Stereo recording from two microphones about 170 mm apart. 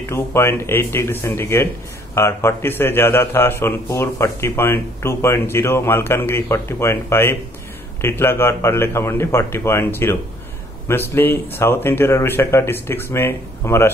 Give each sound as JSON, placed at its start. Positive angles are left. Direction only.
{"t": 0.1, "sound": "a man's voice", "side_deg": 15}